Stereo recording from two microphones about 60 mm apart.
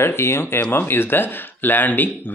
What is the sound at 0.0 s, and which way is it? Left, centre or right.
Speech, left.